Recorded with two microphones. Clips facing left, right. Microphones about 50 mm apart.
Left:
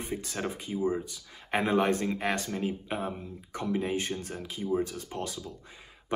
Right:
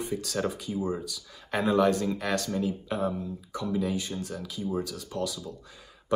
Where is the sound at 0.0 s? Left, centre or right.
Left.